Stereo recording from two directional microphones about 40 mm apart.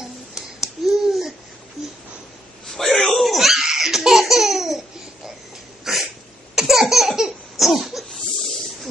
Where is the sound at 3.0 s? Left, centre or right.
Centre.